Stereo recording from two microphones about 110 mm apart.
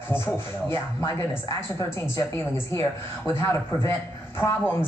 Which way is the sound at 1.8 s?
25° left (ahead or behind).